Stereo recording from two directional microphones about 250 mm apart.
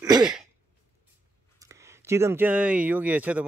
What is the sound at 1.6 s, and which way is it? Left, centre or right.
Speech, centre.